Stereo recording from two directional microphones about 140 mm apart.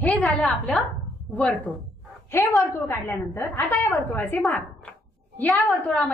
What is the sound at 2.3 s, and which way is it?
A woman's voice, 20° left (ahead or behind).